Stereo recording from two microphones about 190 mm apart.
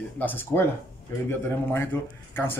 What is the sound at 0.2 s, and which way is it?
A man's voice, 10° left (ahead or behind).